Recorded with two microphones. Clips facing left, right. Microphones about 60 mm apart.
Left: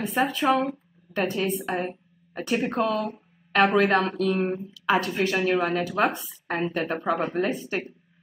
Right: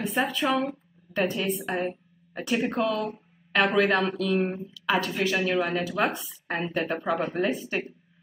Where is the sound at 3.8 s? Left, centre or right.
Left.